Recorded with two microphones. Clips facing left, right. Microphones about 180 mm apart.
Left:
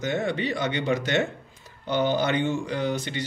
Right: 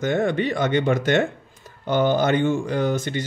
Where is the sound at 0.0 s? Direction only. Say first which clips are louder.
Right 5 dB; 50° right (ahead or behind).